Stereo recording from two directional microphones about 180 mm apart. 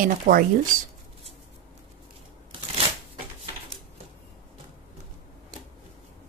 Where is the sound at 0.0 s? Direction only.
55° right (ahead or behind).